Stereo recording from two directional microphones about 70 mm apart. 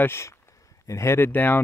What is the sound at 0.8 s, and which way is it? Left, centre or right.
Speech, left.